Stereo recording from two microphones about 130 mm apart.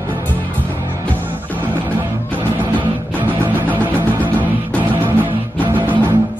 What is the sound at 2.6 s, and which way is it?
Music, 15° right (ahead or behind).